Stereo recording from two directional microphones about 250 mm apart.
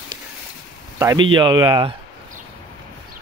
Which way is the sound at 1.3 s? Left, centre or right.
Centre.